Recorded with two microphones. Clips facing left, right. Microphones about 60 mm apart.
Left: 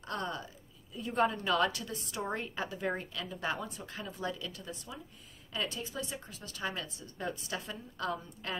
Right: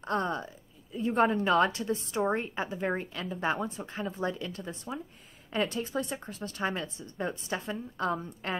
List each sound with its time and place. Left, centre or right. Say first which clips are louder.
0.0 s a woman's voice: right 7 dB; right